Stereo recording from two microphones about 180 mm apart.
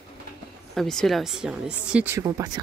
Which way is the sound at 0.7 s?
Centre (ahead or behind).